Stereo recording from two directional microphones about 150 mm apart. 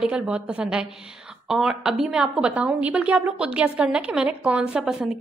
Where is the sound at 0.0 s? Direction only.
5° right (ahead or behind).